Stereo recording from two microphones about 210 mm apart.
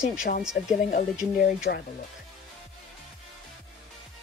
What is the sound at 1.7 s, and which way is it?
Speech, 50° left (ahead or behind).